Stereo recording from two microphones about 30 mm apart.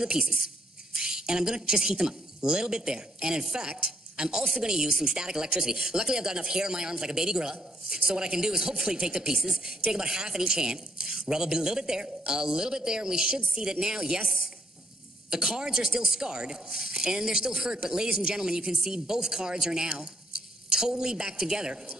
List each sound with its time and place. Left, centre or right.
0.2 s speech: right
15.2 s speech: right